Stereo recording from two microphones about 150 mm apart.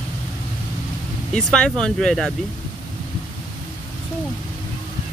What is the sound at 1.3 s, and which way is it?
Speech, 5° left (ahead or behind).